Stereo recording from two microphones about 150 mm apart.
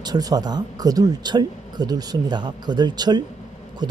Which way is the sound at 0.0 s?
25° right (ahead or behind).